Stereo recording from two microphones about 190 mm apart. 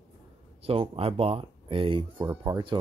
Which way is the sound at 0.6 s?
30° right (ahead or behind).